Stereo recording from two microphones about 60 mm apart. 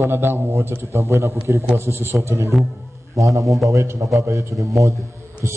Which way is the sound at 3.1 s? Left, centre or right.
Right.